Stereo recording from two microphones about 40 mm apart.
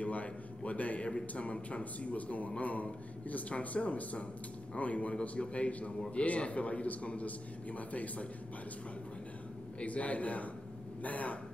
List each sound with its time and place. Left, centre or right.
0.0 s a man's voice: left
9.8 s speech: left